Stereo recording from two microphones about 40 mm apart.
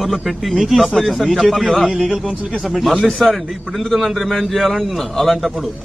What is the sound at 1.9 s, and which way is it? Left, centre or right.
Speech, right.